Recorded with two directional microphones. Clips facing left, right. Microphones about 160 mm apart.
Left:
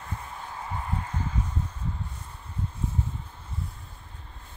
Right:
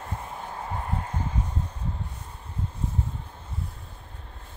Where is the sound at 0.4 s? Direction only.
40° right (ahead or behind).